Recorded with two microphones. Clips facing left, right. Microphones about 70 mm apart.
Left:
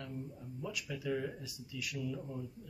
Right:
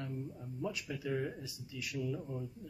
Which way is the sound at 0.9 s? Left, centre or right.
Centre.